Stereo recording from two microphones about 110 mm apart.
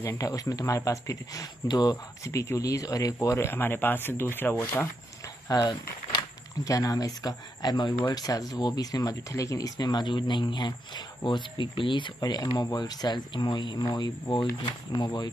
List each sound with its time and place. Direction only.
0.0 s speech: 30° left (ahead or behind)
2.2 s speech: 25° left (ahead or behind)
5.5 s speech: 40° left (ahead or behind)
9.8 s speech: 40° left (ahead or behind)
12.2 s speech: 35° left (ahead or behind)